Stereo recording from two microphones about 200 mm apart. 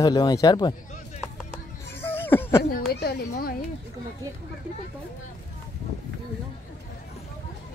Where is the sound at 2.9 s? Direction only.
50° left (ahead or behind).